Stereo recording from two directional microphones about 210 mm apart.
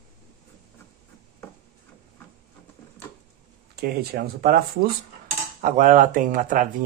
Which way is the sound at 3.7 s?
45° right (ahead or behind).